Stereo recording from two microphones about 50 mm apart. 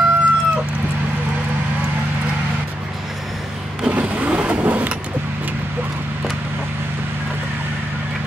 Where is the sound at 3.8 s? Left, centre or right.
Right.